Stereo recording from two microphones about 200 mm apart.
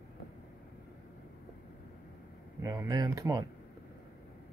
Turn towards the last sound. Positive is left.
turn(degrees=-15)  # may be behind; listen again after turning